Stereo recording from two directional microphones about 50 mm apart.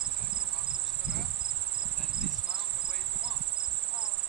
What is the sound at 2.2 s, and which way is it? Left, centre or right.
Insect, centre.